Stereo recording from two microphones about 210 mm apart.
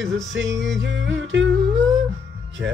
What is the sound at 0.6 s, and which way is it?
Music, 60° right (ahead or behind).